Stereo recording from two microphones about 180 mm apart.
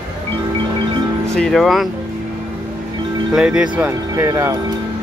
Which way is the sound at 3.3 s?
5° right (ahead or behind).